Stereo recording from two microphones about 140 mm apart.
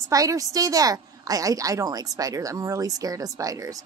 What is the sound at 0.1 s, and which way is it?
A woman's voice, 25° right (ahead or behind).